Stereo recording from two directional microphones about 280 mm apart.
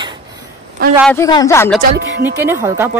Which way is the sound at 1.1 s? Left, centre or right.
Centre.